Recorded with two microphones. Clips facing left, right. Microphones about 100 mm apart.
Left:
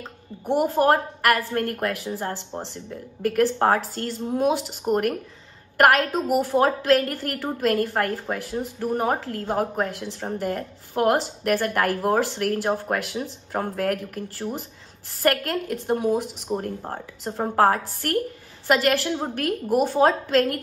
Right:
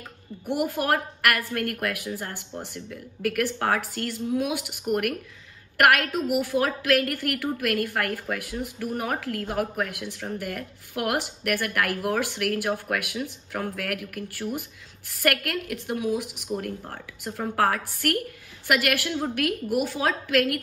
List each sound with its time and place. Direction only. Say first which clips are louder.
0.5 s a woman's voice: left 6 dB; 35° left (ahead or behind)